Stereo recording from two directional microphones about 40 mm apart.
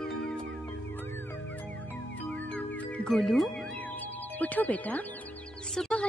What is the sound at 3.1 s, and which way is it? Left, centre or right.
Speech, centre.